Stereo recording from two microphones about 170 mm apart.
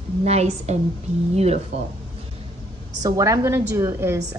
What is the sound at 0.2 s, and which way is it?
A woman's voice, 40° right (ahead or behind).